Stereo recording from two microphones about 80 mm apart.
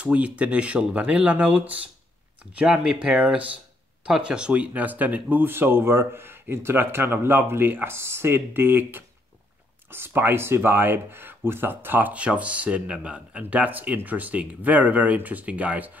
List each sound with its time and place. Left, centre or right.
0.0 s speech: centre